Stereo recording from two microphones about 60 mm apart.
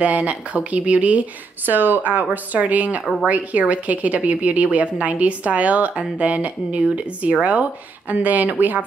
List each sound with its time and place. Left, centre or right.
0.0 s a woman's voice: right